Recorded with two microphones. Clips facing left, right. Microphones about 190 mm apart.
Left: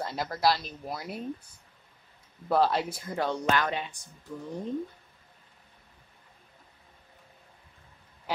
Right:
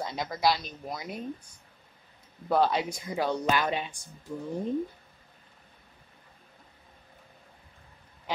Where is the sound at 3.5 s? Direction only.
15° right (ahead or behind).